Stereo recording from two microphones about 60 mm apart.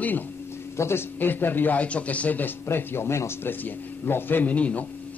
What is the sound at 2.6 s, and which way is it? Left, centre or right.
Speech, left.